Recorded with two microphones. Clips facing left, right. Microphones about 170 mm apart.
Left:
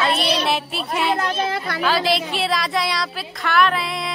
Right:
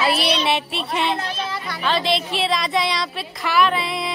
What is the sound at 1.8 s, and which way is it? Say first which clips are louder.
A woman's voice: left 1 dB; 5° left (ahead or behind).